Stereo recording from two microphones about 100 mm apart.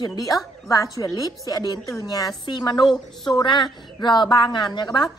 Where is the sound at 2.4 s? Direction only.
50° left (ahead or behind).